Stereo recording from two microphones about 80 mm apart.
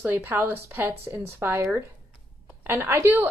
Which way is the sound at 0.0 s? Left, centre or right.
Right.